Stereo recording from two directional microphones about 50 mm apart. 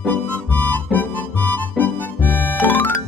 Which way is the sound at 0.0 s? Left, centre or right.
Left.